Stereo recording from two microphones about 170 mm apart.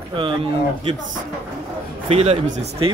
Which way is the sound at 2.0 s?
35° right (ahead or behind).